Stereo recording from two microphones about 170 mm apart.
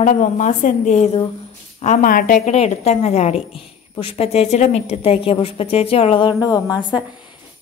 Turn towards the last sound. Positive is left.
turn(degrees=-10)  # may be behind; listen again after turning